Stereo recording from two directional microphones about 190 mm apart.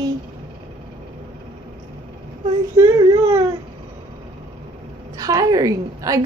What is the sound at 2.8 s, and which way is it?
Speech, 20° right (ahead or behind).